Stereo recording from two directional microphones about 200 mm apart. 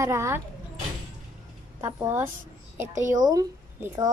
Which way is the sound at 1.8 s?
15° right (ahead or behind).